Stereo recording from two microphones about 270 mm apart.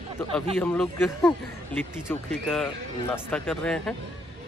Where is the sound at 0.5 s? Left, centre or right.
Centre.